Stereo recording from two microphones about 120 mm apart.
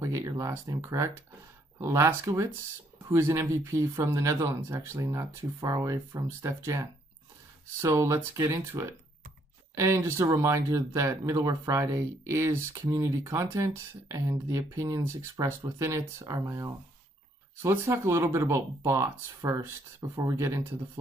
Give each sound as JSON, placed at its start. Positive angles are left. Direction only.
{"t": 0.0, "sound": "speech", "side_deg": -25}